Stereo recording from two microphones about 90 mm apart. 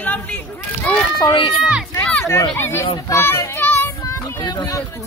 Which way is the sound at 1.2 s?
55° left (ahead or behind).